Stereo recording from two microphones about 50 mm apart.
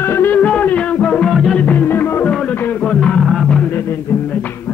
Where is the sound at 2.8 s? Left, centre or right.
Centre.